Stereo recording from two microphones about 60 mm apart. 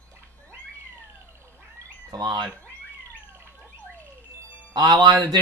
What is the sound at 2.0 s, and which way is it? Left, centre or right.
Speech, right.